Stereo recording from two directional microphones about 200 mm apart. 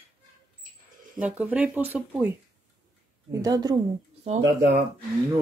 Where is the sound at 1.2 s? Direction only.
5° right (ahead or behind).